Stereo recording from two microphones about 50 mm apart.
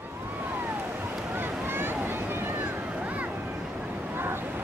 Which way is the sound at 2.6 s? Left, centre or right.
Right.